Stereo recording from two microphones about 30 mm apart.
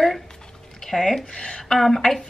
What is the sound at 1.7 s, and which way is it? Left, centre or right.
Speech, centre.